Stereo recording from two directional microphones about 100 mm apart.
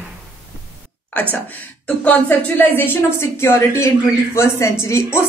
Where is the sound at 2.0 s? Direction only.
20° left (ahead or behind).